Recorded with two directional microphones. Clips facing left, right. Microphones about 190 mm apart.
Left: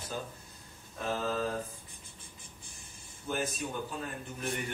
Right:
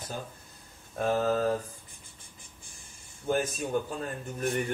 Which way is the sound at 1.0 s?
50° right (ahead or behind).